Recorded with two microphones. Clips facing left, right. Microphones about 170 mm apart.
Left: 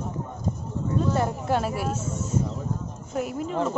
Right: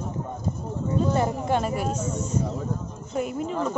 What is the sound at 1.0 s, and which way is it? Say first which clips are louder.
Speech: right 1 dB; centre (ahead or behind).